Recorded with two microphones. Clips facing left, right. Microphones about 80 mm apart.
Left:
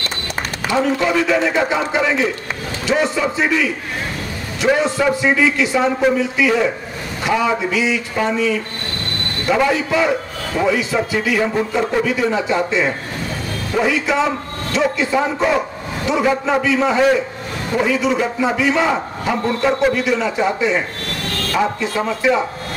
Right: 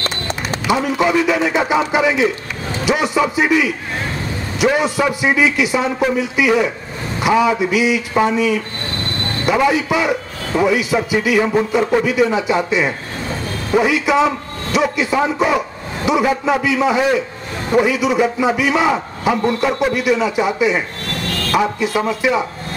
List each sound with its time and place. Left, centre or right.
0.7 s a man's voice: centre